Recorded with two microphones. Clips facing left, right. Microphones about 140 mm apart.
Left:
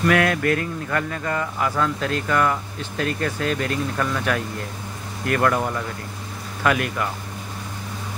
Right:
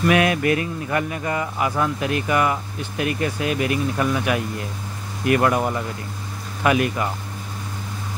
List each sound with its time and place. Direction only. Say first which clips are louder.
0.0 s speech: right 1 dB; 15° right (ahead or behind)